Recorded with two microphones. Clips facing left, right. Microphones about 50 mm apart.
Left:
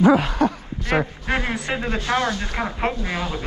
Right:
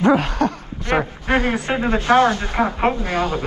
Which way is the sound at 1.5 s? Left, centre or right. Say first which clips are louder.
Right 5 dB; right.